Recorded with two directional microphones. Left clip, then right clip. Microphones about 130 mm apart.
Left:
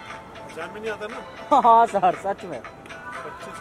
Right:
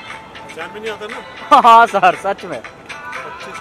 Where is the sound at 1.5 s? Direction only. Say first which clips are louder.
Right 8 dB; 45° right (ahead or behind).